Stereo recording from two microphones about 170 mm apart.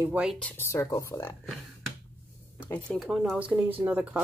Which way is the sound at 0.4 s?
10° left (ahead or behind).